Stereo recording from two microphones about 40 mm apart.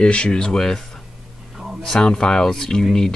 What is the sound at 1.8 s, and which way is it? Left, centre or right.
Speech, centre.